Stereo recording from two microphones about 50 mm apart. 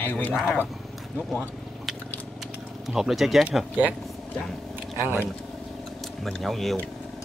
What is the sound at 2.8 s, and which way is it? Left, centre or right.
Speech, centre.